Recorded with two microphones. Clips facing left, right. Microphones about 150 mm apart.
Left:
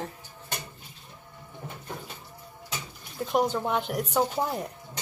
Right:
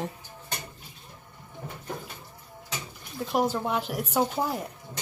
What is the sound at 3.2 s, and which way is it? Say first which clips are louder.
Speech: left 1 dB; 5° right (ahead or behind).